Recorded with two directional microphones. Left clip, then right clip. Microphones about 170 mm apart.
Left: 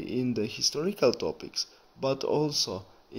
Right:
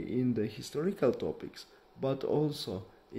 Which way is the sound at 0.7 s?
5° left (ahead or behind).